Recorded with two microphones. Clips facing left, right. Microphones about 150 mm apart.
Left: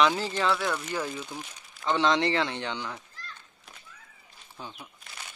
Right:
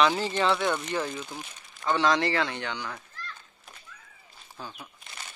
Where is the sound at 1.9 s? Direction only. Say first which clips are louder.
Even; 20° left (ahead or behind).